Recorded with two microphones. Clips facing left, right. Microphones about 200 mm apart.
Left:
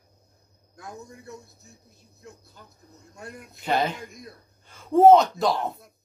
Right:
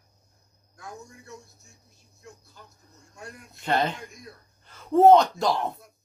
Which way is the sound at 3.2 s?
5° left (ahead or behind).